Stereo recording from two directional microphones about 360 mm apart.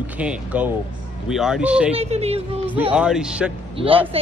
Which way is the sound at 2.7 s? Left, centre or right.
Centre.